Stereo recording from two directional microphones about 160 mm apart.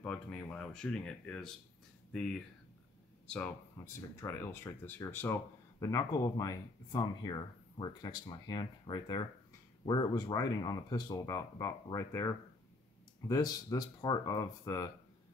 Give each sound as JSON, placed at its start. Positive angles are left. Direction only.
{"t": 0.0, "sound": "speech", "side_deg": 10}
{"t": 3.7, "sound": "speech", "side_deg": 15}